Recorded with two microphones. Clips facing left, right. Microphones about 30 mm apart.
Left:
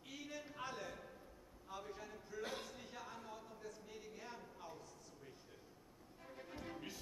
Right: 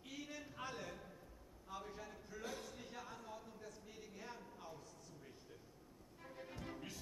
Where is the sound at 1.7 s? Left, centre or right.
Centre.